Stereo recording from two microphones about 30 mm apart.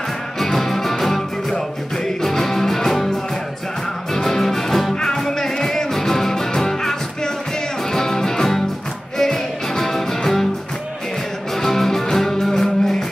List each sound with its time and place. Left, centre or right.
0.4 s music: centre
4.1 s music: centre
11.6 s music: centre